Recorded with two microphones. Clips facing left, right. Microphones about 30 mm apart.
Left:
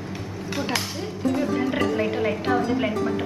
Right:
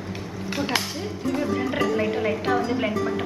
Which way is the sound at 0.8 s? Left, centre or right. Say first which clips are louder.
Left 1 dB; centre.